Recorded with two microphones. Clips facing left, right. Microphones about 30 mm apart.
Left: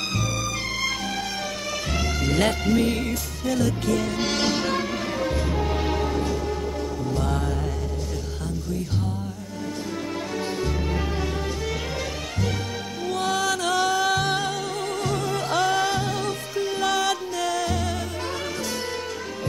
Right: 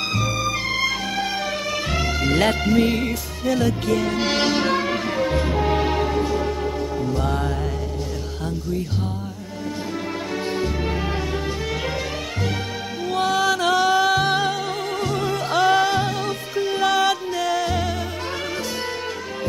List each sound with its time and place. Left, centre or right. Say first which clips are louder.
0.4 s music: right 5 dB; right
2.0 s music: right 3 dB; centre
7.1 s music: right 1 dB; centre
13.0 s music: right 4 dB; centre